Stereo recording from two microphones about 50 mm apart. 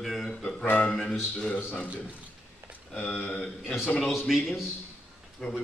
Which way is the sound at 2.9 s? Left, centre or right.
Left.